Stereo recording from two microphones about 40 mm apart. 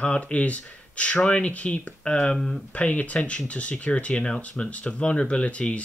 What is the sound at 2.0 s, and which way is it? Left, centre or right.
Speech, left.